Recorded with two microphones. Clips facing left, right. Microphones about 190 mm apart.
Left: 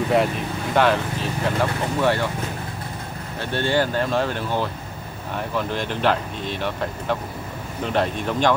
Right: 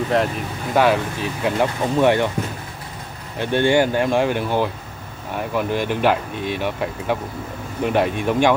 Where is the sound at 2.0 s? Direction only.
20° right (ahead or behind).